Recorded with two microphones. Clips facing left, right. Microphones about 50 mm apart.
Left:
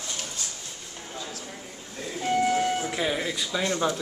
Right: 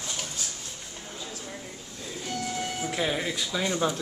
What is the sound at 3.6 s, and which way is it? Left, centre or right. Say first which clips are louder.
Speech: left 1 dB; centre.